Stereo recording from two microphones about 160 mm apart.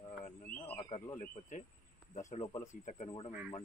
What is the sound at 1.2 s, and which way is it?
Speech, 50° left (ahead or behind).